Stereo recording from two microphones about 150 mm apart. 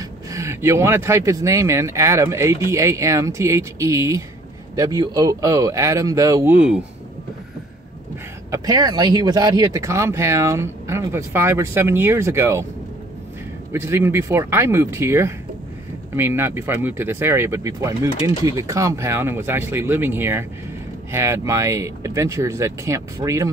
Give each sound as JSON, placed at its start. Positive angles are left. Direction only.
{"t": 0.3, "sound": "speech", "side_deg": -20}
{"t": 6.5, "sound": "speech", "side_deg": -10}
{"t": 8.5, "sound": "speech", "side_deg": -25}
{"t": 13.7, "sound": "speech", "side_deg": -15}